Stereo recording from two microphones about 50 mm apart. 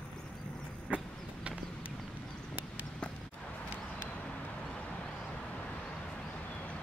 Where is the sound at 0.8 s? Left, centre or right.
Right.